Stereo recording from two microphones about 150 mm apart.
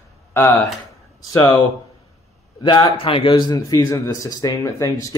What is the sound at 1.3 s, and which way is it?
Speech, 30° left (ahead or behind).